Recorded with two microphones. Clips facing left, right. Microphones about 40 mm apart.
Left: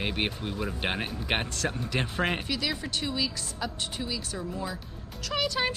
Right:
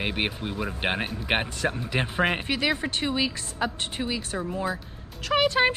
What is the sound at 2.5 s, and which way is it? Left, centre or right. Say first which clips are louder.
A woman's voice: right 5 dB; right.